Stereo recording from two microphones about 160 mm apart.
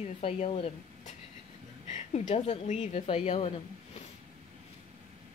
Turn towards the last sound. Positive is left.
turn(degrees=40)  # may be behind; listen again after turning